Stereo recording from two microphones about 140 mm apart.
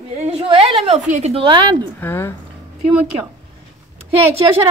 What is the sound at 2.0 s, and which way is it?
Speech, 15° left (ahead or behind).